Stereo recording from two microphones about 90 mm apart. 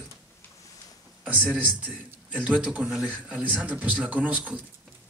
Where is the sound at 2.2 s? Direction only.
15° right (ahead or behind).